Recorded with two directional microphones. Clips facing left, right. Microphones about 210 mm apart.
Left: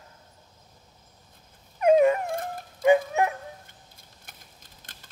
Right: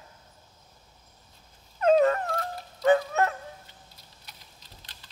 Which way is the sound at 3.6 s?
50° left (ahead or behind).